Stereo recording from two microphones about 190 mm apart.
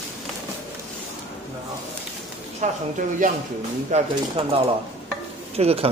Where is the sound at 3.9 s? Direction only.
40° right (ahead or behind).